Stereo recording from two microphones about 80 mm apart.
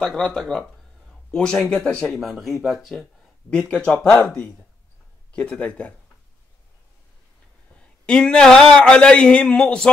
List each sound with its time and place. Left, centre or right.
0.0 s speech: centre
2.0 s speech: centre
3.0 s a man's voice: centre
7.7 s a man's voice: centre